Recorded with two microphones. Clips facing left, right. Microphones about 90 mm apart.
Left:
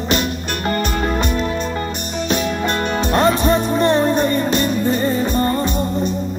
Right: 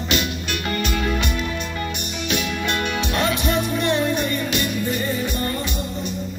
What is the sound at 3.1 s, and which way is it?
Music, 40° left (ahead or behind).